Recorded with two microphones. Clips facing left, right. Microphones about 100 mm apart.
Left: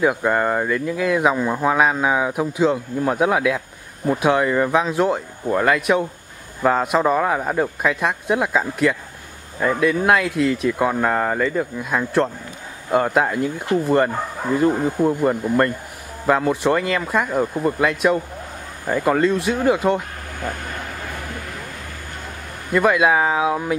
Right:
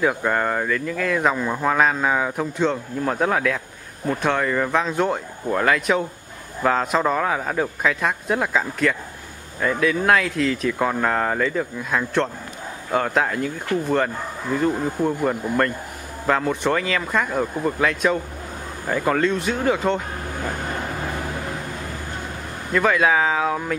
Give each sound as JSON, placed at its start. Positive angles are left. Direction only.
{"t": 0.0, "sound": "speech", "side_deg": 5}
{"t": 22.7, "sound": "speech", "side_deg": 5}